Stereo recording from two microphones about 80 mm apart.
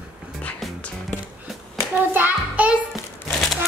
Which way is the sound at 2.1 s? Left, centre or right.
Right.